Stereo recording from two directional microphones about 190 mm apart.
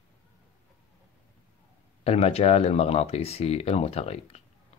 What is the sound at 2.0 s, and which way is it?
Speech, 30° left (ahead or behind).